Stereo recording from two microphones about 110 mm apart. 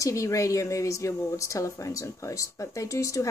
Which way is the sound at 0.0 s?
30° left (ahead or behind).